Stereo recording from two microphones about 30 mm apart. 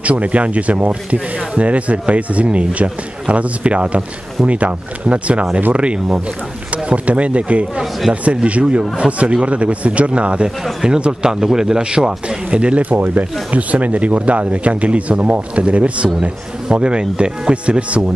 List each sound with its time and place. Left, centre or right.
0.0 s a man's voice: right
10.8 s speech: right
11.2 s a man's voice: centre
12.4 s speech: right
12.9 s speech: right
16.2 s a man's voice: right